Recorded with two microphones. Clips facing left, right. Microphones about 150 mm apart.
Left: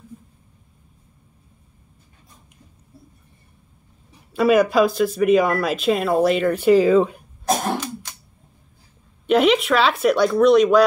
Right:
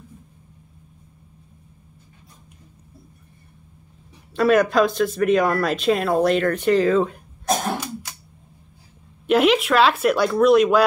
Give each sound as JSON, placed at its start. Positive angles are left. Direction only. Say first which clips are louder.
{"t": 4.3, "sound": "speech", "louder": "left 1 dB", "side_deg": 5}
{"t": 9.2, "sound": "speech", "louder": "left 1 dB", "side_deg": 0}